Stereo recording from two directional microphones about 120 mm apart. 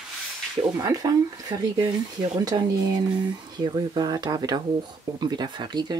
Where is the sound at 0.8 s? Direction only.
25° right (ahead or behind).